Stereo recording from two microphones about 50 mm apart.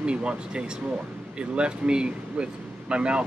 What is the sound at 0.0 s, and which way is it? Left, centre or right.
Speech, right.